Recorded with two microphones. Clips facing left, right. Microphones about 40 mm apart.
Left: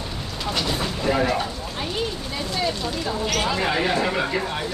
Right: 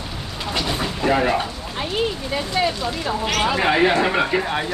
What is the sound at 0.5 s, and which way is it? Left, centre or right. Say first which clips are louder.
Train: right 2 dB; centre.